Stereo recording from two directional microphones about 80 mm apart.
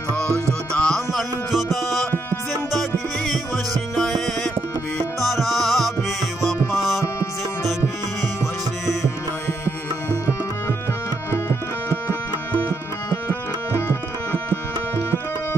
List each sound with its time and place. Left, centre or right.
0.5 s music: centre
5.2 s music: centre
9.7 s music: left
13.7 s tabla: left